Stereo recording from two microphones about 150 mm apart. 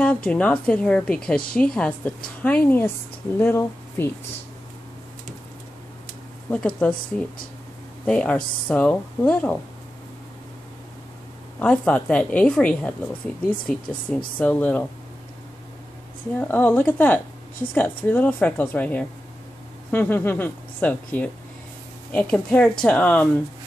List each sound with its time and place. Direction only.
0.0 s a woman's voice: 10° left (ahead or behind)
6.8 s a woman's voice: 10° left (ahead or behind)
11.6 s a woman's voice: 10° left (ahead or behind)
16.3 s a woman's voice: 10° left (ahead or behind)